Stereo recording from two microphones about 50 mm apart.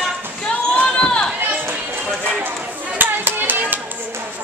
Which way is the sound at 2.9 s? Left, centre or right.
Right.